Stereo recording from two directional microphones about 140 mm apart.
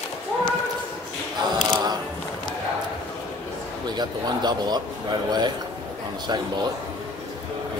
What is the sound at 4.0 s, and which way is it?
Speech, 30° right (ahead or behind).